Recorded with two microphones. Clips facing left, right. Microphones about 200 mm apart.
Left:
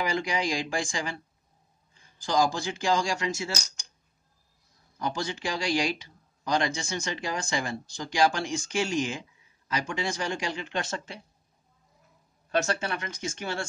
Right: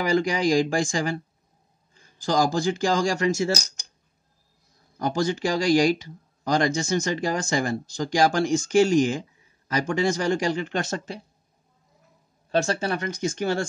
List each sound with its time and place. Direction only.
0.0 s speech: 45° right (ahead or behind)
2.2 s speech: 45° right (ahead or behind)
4.9 s speech: 45° right (ahead or behind)
12.4 s speech: 30° right (ahead or behind)